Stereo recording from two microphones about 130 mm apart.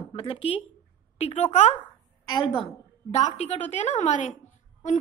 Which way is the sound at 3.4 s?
60° left (ahead or behind).